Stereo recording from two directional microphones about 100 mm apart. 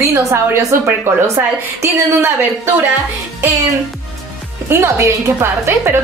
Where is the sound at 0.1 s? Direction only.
30° right (ahead or behind).